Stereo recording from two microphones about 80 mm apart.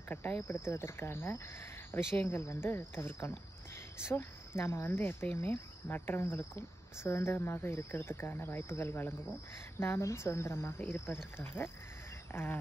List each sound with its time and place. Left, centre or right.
0.1 s speech: left
12.3 s insect: left